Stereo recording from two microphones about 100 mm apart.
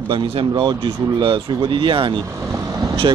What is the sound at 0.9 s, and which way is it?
Speech, 60° right (ahead or behind).